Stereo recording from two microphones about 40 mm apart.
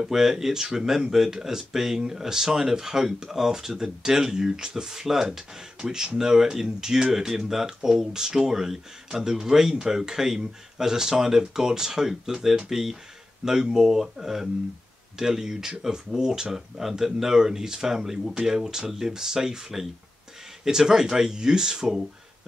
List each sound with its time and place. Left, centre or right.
0.0 s speech: centre
20.6 s speech: centre